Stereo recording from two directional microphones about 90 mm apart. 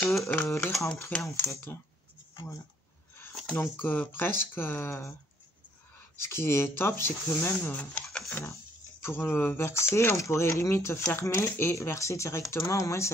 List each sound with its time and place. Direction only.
0.0 s typewriter: 30° left (ahead or behind)
0.5 s speech: 30° left (ahead or behind)
3.5 s speech: 20° left (ahead or behind)
6.1 s speech: 30° left (ahead or behind)